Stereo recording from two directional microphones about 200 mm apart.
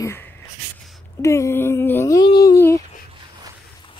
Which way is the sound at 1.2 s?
15° left (ahead or behind).